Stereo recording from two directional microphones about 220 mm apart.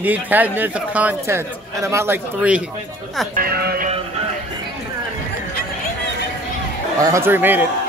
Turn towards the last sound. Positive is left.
turn(degrees=-10)  # may be behind; listen again after turning